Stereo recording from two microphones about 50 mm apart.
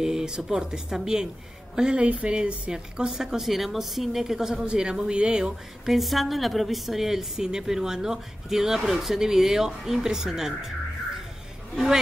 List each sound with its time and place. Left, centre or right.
0.0 s a sound: centre
0.5 s a woman's voice: centre
5.9 s a woman's voice: centre